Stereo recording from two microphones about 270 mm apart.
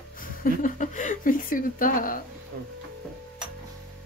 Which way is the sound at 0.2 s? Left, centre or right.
Left.